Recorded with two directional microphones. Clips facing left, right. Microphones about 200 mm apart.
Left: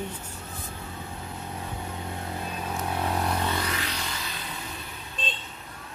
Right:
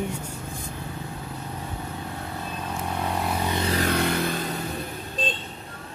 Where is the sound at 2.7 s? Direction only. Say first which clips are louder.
Even; centre (ahead or behind).